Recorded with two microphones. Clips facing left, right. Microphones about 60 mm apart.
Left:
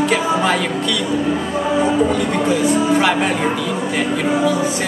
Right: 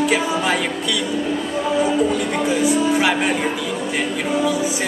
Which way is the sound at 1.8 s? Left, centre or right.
Centre.